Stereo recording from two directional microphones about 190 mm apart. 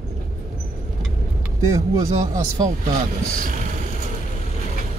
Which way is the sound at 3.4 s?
45° right (ahead or behind).